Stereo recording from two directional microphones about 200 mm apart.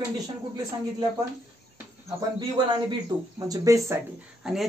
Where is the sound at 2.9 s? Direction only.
20° right (ahead or behind).